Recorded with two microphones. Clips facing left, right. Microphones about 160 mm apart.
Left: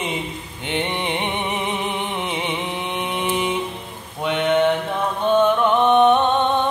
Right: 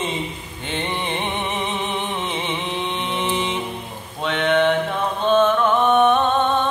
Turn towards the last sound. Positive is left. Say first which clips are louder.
# left 1 dB
turn(degrees=20)  # may be behind; listen again after turning